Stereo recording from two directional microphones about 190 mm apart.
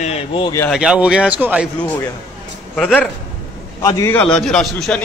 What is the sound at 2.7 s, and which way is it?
A man's voice, 5° left (ahead or behind).